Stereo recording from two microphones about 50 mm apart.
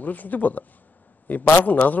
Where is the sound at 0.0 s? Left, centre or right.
Left.